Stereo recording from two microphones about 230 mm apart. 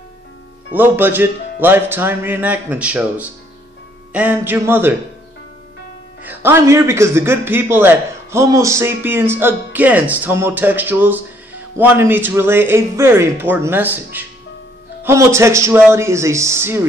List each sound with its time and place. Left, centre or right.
0.7 s a man's voice: centre
6.2 s a man's voice: centre